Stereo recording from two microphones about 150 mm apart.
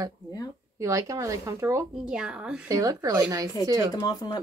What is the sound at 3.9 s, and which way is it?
Speech, 25° left (ahead or behind).